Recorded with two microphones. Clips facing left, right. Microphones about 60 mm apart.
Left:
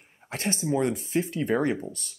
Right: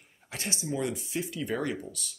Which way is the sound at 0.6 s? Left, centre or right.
Left.